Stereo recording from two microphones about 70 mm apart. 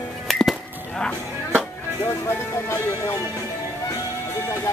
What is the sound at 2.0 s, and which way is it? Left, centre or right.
Music, left.